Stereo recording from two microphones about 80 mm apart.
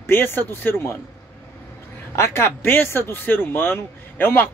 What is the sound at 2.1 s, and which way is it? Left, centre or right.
Speech, left.